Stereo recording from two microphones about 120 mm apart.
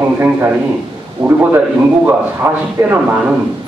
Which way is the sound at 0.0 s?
20° right (ahead or behind).